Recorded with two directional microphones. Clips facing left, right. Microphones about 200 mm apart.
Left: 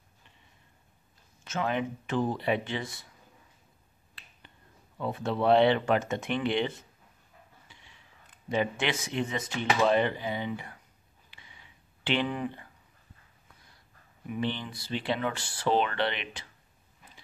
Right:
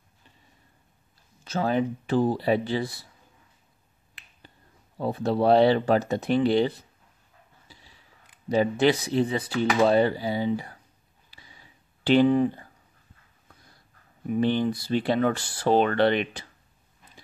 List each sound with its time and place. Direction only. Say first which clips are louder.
1.4 s speech: right 5 dB; 35° right (ahead or behind)
4.9 s speech: right 6 dB; 35° right (ahead or behind)
7.6 s a sound: right 3 dB; 35° right (ahead or behind)
8.5 s speech: right 8 dB; 35° right (ahead or behind)
11.2 s a sound: right 3 dB; 35° right (ahead or behind)
14.2 s speech: right 9 dB; 40° right (ahead or behind)